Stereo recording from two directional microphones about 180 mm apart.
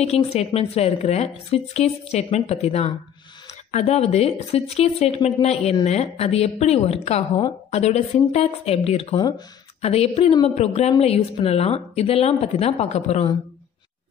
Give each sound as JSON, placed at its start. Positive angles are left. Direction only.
{"t": 0.0, "sound": "speech", "side_deg": 35}